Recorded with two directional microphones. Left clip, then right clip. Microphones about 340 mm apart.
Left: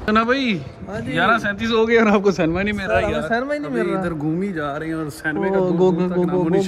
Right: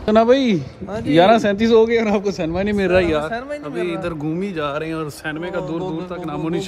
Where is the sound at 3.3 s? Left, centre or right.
Left.